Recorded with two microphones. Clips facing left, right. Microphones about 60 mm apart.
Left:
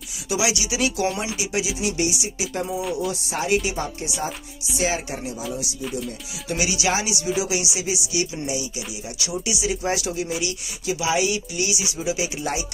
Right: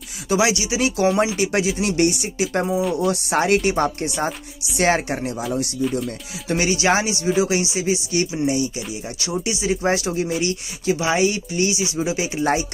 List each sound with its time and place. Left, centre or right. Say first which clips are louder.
0.3 s speech: right 5 dB; right
1.4 s speech: right 5 dB; right
2.8 s speech: right 5 dB; centre
3.1 s speech: right 6 dB; right
5.8 s speech: right 8 dB; centre
6.0 s speech: right 4 dB; right